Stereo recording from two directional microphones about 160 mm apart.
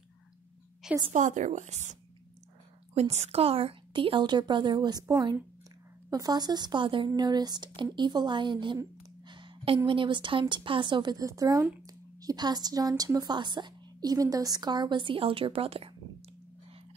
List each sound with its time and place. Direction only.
1.1 s a woman's voice: 50° right (ahead or behind)
2.9 s a woman's voice: 45° right (ahead or behind)
9.3 s a sound: 30° right (ahead or behind)
9.8 s a woman's voice: 30° right (ahead or behind)